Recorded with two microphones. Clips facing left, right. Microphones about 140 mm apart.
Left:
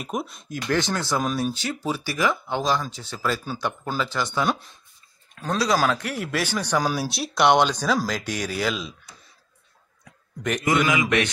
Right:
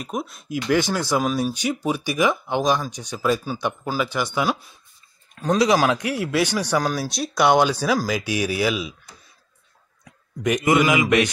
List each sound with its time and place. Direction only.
0.0 s speech: centre (ahead or behind)
5.3 s a sound: 10° right (ahead or behind)
5.6 s speech: 15° right (ahead or behind)
6.8 s speech: 5° left (ahead or behind)
10.6 s speech: 15° right (ahead or behind)